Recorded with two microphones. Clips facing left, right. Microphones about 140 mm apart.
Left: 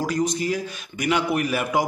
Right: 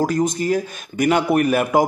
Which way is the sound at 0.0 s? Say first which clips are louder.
Right 4 dB; 45° right (ahead or behind).